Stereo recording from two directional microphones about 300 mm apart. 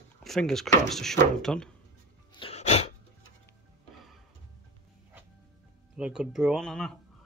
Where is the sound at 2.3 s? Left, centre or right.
Centre.